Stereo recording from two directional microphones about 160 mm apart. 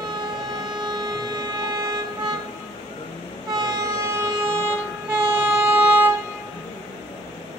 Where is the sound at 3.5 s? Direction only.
25° right (ahead or behind).